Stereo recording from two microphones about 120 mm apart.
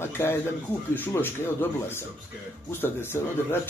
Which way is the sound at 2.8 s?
20° left (ahead or behind).